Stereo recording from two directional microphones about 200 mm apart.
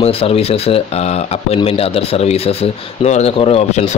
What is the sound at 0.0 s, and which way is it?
Speech, 30° left (ahead or behind).